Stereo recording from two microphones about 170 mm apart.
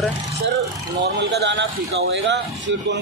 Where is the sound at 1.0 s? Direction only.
85° right.